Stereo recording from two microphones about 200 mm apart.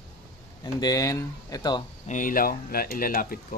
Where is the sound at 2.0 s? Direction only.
40° left (ahead or behind).